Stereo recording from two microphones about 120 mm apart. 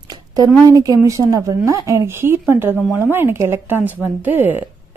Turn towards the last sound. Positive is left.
turn(degrees=-15)  # may be behind; listen again after turning